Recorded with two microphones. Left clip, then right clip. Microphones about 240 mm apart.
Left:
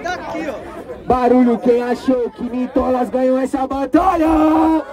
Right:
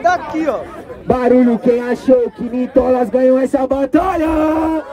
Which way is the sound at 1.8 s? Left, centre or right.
Centre.